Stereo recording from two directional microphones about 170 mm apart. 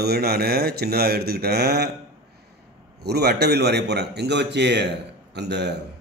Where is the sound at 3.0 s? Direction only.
70° right (ahead or behind).